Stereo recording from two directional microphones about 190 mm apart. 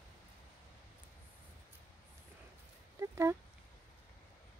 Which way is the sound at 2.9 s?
15° right (ahead or behind).